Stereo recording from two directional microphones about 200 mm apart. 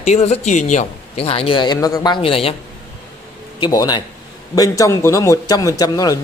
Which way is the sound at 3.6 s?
20° left (ahead or behind).